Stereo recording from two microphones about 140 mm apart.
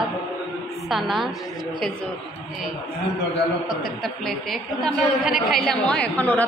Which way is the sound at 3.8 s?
Centre (ahead or behind).